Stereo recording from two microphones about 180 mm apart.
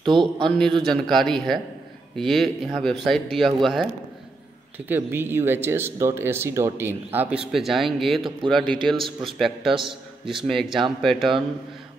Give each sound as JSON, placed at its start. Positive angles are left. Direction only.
{"t": 0.0, "sound": "a man's voice", "side_deg": -25}
{"t": 0.4, "sound": "speech", "side_deg": 5}
{"t": 4.7, "sound": "speech", "side_deg": -10}
{"t": 9.8, "sound": "a man's voice", "side_deg": -30}
{"t": 10.4, "sound": "speech", "side_deg": 0}